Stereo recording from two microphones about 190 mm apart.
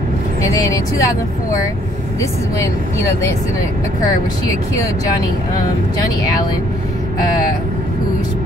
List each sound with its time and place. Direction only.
0.5 s speech: 15° left (ahead or behind)